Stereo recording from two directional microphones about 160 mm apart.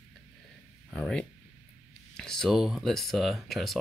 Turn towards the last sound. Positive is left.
turn(degrees=0)  # may be behind; listen again after turning